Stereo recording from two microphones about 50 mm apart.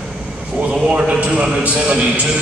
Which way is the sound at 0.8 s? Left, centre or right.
Right.